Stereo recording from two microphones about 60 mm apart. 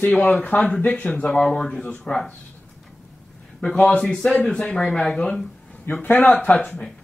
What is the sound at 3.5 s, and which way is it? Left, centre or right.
Speech, centre.